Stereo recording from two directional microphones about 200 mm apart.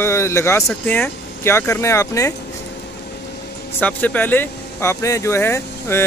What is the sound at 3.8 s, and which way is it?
Speech, 10° left (ahead or behind).